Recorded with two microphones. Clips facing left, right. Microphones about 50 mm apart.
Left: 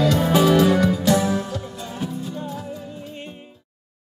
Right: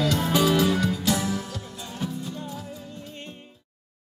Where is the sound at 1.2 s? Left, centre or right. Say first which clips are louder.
Left 6 dB; left.